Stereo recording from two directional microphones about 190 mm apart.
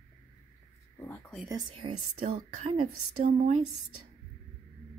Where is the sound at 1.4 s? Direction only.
20° right (ahead or behind).